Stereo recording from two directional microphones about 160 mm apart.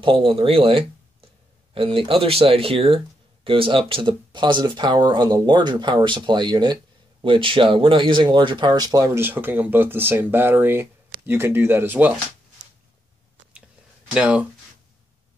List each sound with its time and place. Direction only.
0.0 s speech: 30° right (ahead or behind); by 12.1 s 10° right (ahead or behind)
14.1 s speech: 5° right (ahead or behind)